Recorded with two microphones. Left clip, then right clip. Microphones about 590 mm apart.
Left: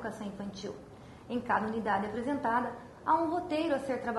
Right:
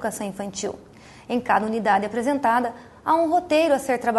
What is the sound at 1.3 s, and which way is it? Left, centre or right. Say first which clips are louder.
A woman's voice: right 10 dB; right.